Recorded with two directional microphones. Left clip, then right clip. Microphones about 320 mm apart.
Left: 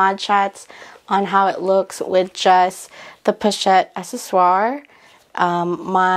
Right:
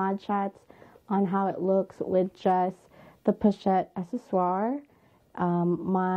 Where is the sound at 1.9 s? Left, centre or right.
Centre.